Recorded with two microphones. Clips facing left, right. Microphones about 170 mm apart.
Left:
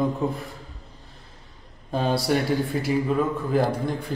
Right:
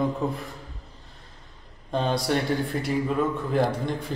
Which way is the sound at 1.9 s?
5° left (ahead or behind).